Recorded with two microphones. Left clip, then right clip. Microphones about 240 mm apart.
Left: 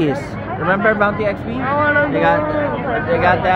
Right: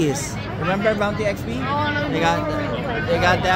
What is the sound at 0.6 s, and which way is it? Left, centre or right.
Speech, centre.